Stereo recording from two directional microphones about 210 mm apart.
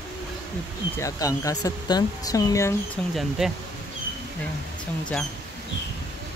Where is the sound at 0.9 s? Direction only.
15° left (ahead or behind).